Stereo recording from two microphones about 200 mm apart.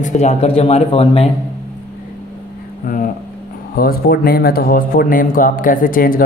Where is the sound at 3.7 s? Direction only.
50° left (ahead or behind).